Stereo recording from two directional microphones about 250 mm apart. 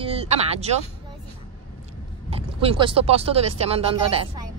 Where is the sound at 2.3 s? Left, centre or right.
Right.